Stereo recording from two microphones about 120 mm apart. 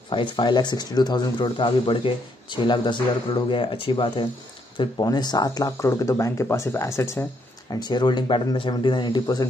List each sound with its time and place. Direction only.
0.1 s speech: 45° left (ahead or behind)
4.7 s speech: 35° left (ahead or behind)
7.7 s speech: 35° left (ahead or behind)